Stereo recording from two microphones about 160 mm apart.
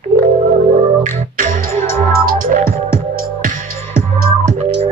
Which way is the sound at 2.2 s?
60° right (ahead or behind).